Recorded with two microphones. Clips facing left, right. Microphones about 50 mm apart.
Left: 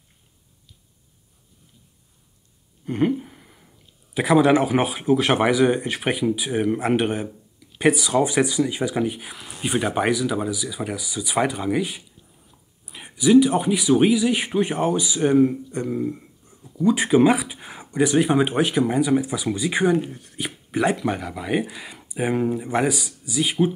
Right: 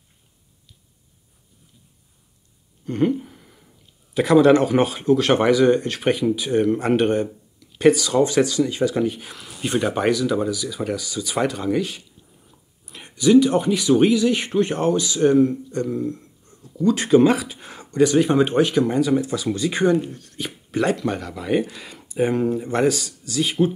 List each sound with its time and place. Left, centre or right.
2.8 s speech: centre